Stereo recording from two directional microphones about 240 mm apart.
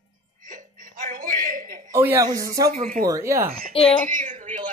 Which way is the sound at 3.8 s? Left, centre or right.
Left.